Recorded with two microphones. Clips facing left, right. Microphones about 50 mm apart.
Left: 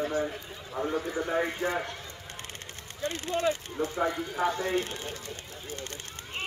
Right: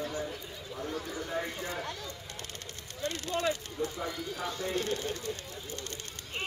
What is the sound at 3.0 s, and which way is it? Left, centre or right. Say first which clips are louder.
Speech: left 3 dB; left.